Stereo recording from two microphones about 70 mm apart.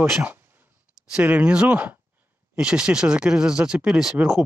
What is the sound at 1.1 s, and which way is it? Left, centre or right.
Speech, centre.